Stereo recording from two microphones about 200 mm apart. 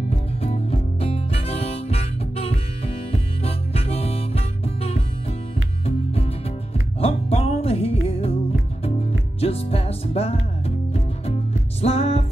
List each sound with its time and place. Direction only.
0.1 s harmonica: 30° left (ahead or behind)
5.9 s music: 30° left (ahead or behind)
11.8 s music: 30° left (ahead or behind)